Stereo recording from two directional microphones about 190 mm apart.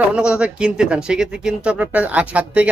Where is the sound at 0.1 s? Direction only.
5° right (ahead or behind).